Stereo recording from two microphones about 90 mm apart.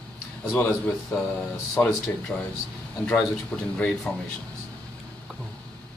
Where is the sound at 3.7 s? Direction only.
15° left (ahead or behind).